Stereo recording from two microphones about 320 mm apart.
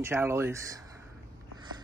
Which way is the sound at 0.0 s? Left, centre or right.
Centre.